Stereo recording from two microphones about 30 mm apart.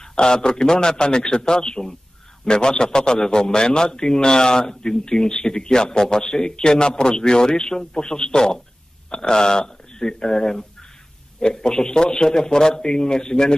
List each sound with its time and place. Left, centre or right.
0.0 s a man's voice: left